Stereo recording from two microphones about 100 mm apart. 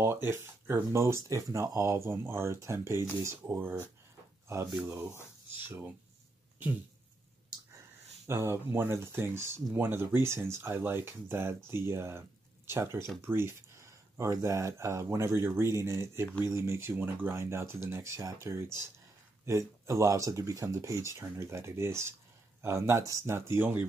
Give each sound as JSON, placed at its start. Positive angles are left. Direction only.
{"t": 0.0, "sound": "speech", "side_deg": -25}
{"t": 8.3, "sound": "speech", "side_deg": -25}